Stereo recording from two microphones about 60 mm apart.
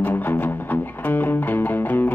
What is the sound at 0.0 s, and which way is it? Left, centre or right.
Music, left.